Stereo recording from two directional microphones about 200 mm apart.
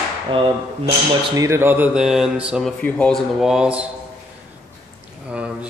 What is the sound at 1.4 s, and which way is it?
Speech, 15° right (ahead or behind).